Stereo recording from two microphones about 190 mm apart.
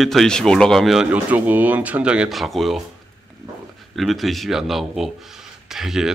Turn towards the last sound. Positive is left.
turn(degrees=0)  # may be behind; listen again after turning